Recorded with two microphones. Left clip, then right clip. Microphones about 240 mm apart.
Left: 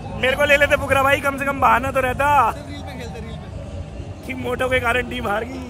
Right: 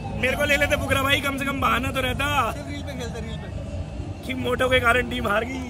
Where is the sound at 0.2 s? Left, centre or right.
Centre.